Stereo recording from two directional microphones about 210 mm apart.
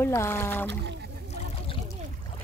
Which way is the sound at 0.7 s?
55° right (ahead or behind).